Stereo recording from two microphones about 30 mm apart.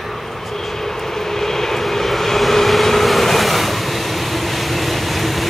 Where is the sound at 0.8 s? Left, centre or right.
Centre.